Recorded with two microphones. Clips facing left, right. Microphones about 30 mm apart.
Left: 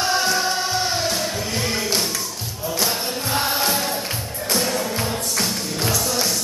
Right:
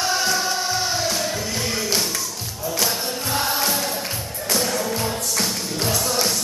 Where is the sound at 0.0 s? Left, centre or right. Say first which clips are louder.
Left 2 dB; left.